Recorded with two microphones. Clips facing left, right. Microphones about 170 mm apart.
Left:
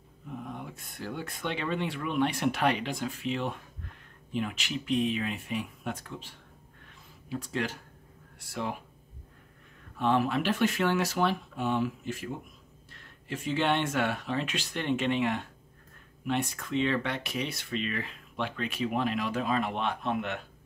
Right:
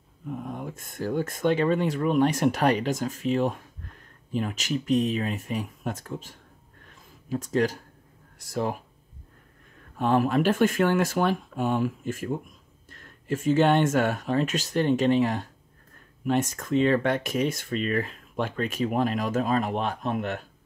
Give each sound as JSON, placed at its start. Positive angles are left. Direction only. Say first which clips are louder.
{"t": 0.4, "sound": "speech", "louder": "right 5 dB", "side_deg": -45}
{"t": 9.9, "sound": "speech", "louder": "right 4 dB", "side_deg": -45}